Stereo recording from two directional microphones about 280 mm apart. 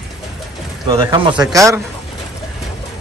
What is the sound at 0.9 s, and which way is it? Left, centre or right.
Speech, centre.